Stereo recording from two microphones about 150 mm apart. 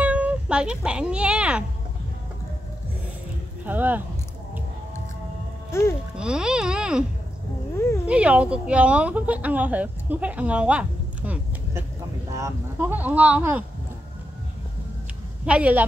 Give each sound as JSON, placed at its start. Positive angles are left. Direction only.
{"t": 0.0, "sound": "a child's voice", "side_deg": -10}
{"t": 3.6, "sound": "speech", "side_deg": -10}
{"t": 5.7, "sound": "speech", "side_deg": 20}
{"t": 6.1, "sound": "speech", "side_deg": -5}
{"t": 8.1, "sound": "a woman's voice", "side_deg": -10}
{"t": 15.4, "sound": "speech", "side_deg": -10}